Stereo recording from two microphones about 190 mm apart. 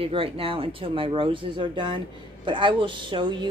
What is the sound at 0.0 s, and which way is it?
A woman's voice, 30° right (ahead or behind).